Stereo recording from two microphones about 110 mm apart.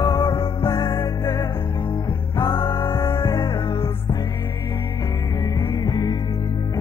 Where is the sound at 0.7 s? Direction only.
25° left (ahead or behind).